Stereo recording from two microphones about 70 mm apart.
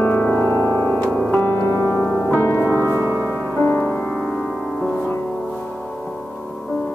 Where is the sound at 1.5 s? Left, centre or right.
Left.